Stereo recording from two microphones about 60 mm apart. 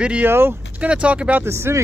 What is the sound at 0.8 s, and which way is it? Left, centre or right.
Speech, centre.